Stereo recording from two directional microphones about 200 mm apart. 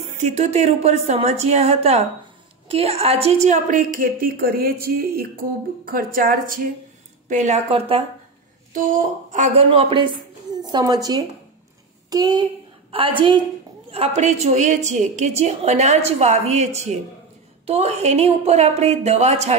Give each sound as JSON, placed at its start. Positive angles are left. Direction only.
{"t": 0.2, "sound": "a woman's voice", "side_deg": -35}
{"t": 3.4, "sound": "a woman's voice", "side_deg": -40}